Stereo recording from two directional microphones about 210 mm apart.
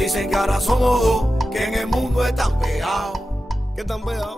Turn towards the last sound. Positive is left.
turn(degrees=0)  # may be behind; listen again after turning